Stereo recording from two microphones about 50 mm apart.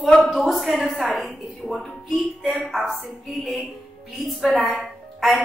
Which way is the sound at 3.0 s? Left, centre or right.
Centre.